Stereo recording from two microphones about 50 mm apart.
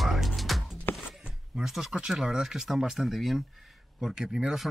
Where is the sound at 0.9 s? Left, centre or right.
Left.